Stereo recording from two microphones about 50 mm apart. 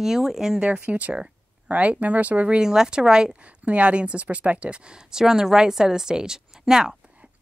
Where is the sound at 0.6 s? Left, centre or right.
Right.